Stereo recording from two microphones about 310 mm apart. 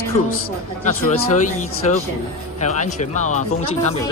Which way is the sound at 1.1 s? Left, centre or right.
Left.